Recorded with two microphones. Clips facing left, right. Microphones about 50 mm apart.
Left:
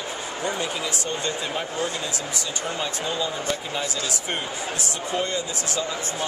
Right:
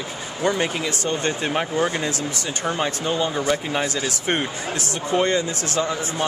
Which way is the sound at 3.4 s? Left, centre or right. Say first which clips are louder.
Right 5 dB; right.